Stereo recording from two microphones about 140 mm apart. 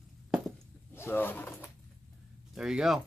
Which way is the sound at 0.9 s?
15° left (ahead or behind).